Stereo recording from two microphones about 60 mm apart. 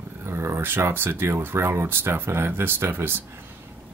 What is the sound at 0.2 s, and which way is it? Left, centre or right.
Speech, right.